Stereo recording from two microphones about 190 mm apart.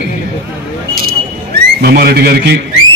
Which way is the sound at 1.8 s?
55° right (ahead or behind).